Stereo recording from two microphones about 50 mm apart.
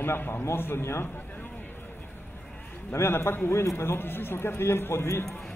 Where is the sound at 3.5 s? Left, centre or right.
Left.